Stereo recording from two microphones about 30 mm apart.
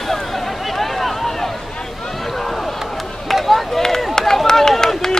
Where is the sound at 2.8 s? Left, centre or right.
Centre.